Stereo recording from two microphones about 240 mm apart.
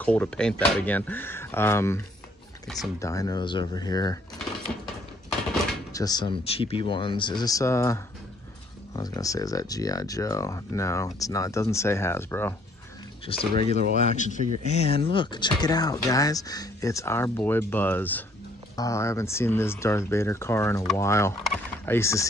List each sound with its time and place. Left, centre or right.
0.0 s speech: centre
3.0 s speech: centre
5.9 s speech: centre
13.6 s speech: left